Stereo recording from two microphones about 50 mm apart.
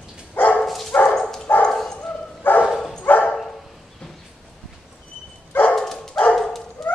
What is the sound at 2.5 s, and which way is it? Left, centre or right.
Dog, left.